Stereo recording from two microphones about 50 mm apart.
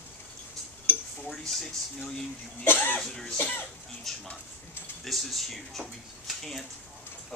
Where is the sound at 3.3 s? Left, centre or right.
Left.